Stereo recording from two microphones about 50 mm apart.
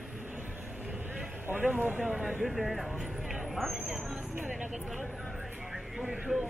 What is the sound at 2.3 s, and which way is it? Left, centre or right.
Speech, centre.